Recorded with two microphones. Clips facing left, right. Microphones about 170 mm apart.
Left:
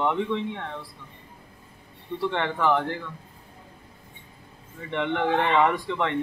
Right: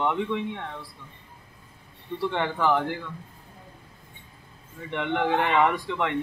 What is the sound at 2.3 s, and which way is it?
Speech, 5° right (ahead or behind).